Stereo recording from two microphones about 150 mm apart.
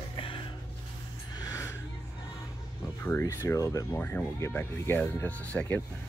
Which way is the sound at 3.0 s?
15° left (ahead or behind).